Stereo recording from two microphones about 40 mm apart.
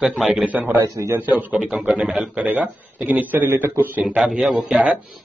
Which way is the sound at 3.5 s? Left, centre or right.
Right.